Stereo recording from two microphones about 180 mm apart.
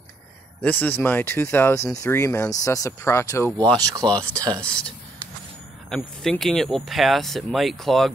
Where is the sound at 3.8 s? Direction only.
20° right (ahead or behind).